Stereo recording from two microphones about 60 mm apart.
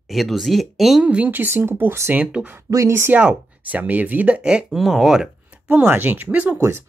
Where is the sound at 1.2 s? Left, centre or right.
Right.